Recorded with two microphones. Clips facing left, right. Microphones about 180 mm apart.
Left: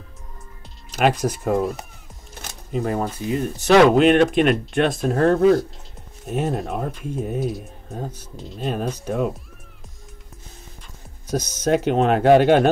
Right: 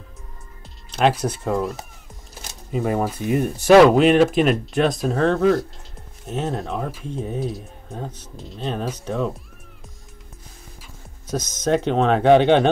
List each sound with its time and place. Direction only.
1.2 s speech: 10° left (ahead or behind)
2.7 s speech: 5° right (ahead or behind)
3.8 s speech: centre (ahead or behind)
11.2 s speech: 10° left (ahead or behind)